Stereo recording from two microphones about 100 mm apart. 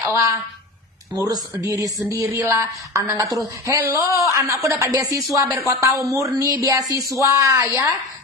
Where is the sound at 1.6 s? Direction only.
35° right (ahead or behind).